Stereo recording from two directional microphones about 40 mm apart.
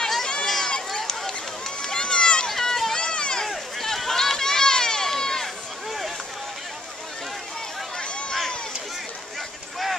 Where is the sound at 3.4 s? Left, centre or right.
Centre.